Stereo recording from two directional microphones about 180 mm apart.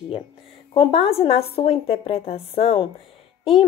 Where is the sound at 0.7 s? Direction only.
30° left (ahead or behind).